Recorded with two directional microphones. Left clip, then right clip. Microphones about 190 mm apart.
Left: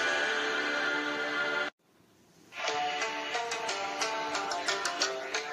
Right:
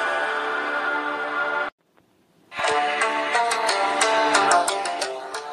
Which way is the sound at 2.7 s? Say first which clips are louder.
Right 10 dB; 60° right (ahead or behind).